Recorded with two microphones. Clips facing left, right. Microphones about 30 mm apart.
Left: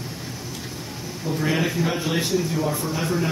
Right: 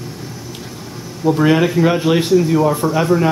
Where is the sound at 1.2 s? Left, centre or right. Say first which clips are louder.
Right 10 dB; right.